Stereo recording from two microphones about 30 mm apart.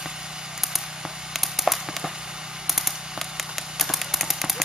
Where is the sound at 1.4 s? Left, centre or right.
Centre.